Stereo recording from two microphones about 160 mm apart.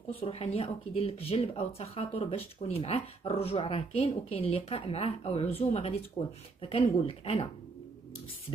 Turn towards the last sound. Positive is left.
turn(degrees=35)  # may be behind; listen again after turning